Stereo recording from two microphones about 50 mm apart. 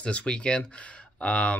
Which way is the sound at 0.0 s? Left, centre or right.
Left.